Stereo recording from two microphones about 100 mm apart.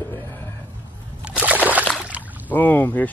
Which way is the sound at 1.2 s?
15° right (ahead or behind).